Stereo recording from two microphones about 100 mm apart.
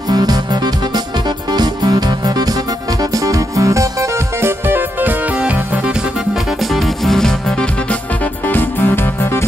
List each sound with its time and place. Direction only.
0.1 s music: 40° right (ahead or behind)
1.5 s music: 45° right (ahead or behind); by 5.6 s 15° right (ahead or behind)
6.7 s music: centre (ahead or behind)
8.5 s music: 20° left (ahead or behind)